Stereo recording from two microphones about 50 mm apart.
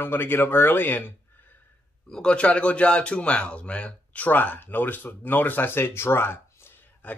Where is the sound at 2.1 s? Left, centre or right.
Centre.